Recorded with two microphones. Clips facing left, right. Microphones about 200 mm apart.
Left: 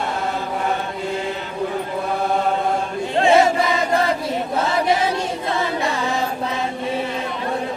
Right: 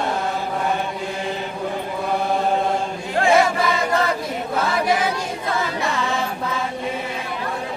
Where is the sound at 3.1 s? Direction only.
25° left (ahead or behind).